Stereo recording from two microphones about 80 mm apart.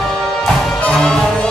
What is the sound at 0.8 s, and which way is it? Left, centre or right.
Music, centre.